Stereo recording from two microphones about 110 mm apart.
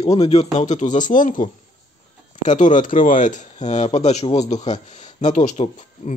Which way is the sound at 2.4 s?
90° left.